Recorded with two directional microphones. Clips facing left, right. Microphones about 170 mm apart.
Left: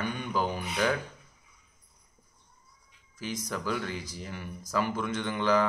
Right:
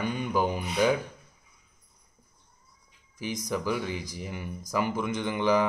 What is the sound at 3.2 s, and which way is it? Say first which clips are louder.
Speech: right 4 dB; 15° right (ahead or behind).